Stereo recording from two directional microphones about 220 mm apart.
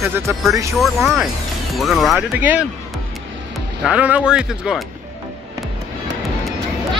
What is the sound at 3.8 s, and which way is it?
Speech, 5° right (ahead or behind).